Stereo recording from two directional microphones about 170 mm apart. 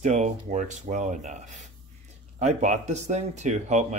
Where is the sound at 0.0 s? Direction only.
45° right (ahead or behind).